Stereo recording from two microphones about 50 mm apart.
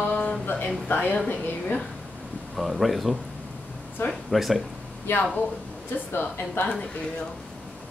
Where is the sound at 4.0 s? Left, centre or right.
Left.